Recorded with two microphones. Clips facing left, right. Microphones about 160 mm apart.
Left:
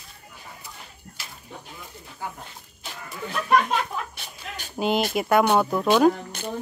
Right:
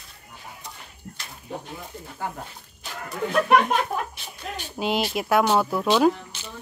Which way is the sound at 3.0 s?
50° right (ahead or behind).